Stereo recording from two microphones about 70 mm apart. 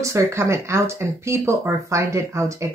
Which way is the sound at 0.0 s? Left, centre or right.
Right.